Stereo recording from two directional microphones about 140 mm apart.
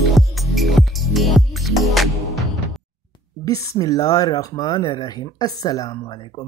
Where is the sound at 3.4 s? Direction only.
25° left (ahead or behind).